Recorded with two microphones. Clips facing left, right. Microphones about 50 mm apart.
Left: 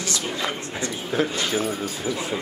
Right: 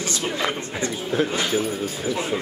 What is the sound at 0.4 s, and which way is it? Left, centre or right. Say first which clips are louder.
Speech: right 3 dB; right.